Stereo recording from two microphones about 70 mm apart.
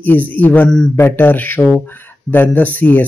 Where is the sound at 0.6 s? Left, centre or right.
Centre.